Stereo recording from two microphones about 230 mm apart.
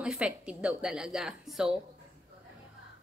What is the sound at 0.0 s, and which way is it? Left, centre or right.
Speech, centre.